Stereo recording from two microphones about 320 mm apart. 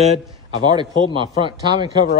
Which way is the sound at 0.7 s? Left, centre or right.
Centre.